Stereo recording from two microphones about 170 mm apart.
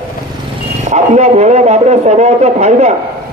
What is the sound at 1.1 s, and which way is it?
A man's voice, 40° right (ahead or behind).